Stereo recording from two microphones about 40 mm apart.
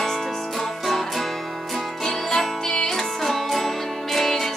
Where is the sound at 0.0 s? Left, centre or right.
Centre.